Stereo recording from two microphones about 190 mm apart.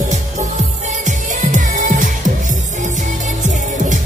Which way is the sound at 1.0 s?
40° right (ahead or behind).